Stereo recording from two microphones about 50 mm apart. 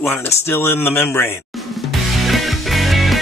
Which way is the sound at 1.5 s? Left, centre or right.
Centre.